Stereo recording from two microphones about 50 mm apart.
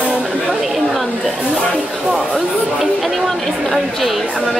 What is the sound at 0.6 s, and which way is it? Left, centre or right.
Chatter, centre.